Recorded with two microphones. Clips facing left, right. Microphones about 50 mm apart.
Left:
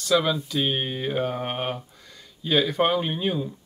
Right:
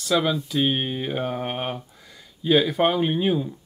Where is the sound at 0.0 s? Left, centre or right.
Centre.